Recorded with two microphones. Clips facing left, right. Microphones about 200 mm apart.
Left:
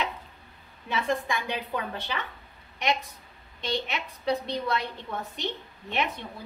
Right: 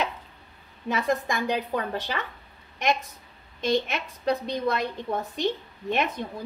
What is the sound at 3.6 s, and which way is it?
A woman's voice, 45° right (ahead or behind).